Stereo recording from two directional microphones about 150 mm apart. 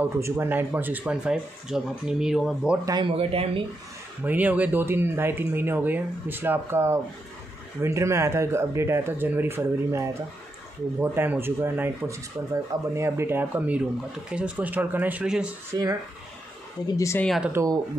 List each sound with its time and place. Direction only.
0.0 s speech: 15° right (ahead or behind)
2.8 s speech: 25° right (ahead or behind)
3.1 s speech: 40° right (ahead or behind)
4.2 s speech: 10° right (ahead or behind)
15.7 s speech: 20° right (ahead or behind)
16.8 s a woman's voice: 20° left (ahead or behind)
17.4 s speech: 15° right (ahead or behind)